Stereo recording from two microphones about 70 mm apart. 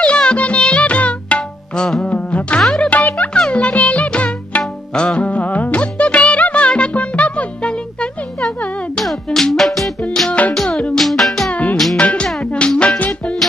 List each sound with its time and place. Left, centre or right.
0.0 s music: centre
2.9 s music: left; by 12.0 s centre
12.0 s music: centre